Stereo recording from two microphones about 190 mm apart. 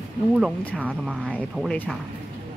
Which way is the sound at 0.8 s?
5° right (ahead or behind).